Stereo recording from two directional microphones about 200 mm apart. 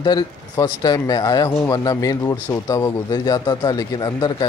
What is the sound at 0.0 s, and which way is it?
Speech, 20° left (ahead or behind).